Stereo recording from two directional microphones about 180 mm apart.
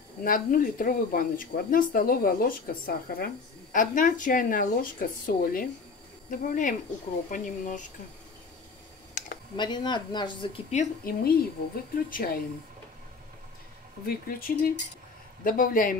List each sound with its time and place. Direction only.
0.2 s speech: 50° left (ahead or behind)
9.2 s computer keyboard: 45° left (ahead or behind)
9.6 s speech: 25° left (ahead or behind)
11.1 s a woman's voice: 55° left (ahead or behind)
14.0 s speech: 55° left (ahead or behind)